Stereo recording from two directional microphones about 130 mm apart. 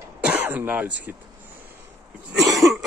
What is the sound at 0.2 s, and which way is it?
Throat clearing, 10° right (ahead or behind).